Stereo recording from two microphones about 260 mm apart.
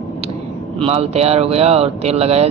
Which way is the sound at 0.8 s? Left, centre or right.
Right.